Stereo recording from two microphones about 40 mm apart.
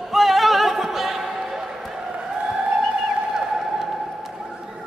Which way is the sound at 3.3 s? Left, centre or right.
Centre.